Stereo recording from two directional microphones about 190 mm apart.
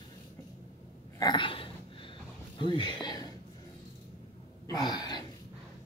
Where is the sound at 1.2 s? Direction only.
25° left (ahead or behind).